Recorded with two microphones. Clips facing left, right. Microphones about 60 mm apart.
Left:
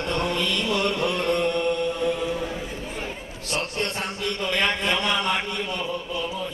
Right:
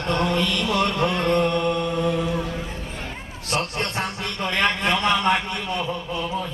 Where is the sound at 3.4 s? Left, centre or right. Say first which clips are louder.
Right 2 dB; right.